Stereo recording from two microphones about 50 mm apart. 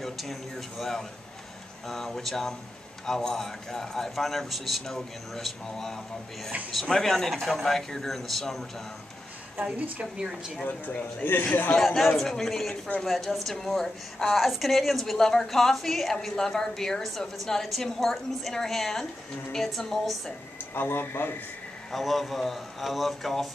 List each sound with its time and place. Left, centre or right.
0.0 s a woman's voice: centre
10.1 s speech: centre
10.6 s speech: left
11.7 s a woman's voice: centre
20.7 s speech: left
21.9 s a woman's voice: centre